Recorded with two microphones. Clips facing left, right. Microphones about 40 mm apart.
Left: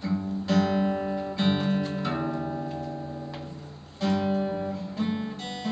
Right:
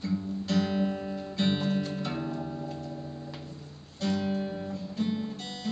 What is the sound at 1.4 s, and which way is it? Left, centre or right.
Music, centre.